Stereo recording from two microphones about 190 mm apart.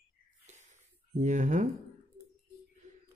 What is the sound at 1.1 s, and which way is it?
Speech, 40° right (ahead or behind).